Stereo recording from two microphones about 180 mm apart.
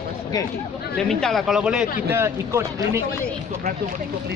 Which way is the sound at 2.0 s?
15° right (ahead or behind).